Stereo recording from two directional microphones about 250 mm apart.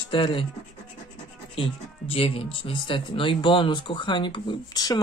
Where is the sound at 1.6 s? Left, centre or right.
Left.